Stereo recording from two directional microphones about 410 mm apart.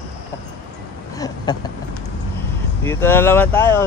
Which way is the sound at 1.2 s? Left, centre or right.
Centre.